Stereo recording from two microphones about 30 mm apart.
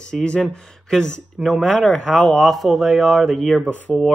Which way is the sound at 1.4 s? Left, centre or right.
Centre.